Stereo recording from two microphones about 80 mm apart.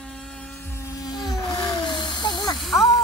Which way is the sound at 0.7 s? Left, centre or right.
Left.